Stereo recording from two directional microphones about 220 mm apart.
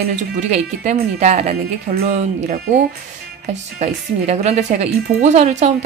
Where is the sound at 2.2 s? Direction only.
30° right (ahead or behind).